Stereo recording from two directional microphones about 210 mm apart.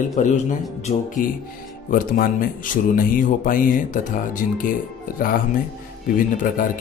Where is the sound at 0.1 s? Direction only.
35° left (ahead or behind).